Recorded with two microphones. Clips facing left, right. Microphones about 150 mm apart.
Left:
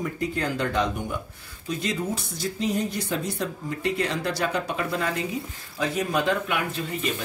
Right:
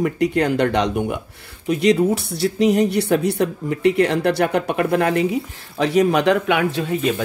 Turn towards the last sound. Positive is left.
turn(degrees=-75)  # may be behind; listen again after turning